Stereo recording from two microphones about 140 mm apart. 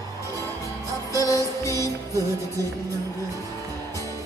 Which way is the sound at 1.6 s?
20° left (ahead or behind).